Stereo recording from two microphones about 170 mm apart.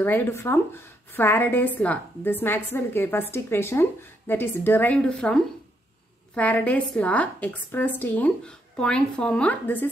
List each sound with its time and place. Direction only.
0.0 s a woman's voice: 10° left (ahead or behind)